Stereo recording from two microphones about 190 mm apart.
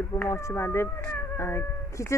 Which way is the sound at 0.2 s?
15° left (ahead or behind).